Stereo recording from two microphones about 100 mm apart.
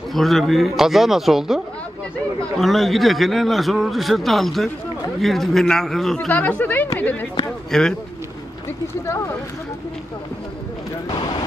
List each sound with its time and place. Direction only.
0.1 s a man's voice: centre (ahead or behind)
6.1 s speech: 15° left (ahead or behind)
7.7 s a man's voice: 5° left (ahead or behind)
11.1 s vehicle: 45° left (ahead or behind)